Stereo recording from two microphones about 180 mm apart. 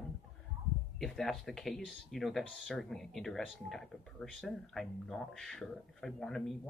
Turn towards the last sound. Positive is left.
turn(degrees=5)  # may be behind; listen again after turning